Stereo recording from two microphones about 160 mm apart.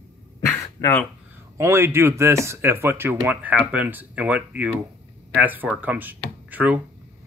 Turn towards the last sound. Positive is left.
turn(degrees=-10)  # may be behind; listen again after turning